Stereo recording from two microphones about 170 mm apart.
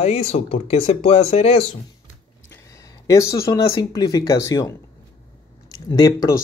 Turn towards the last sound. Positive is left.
turn(degrees=20)  # may be behind; listen again after turning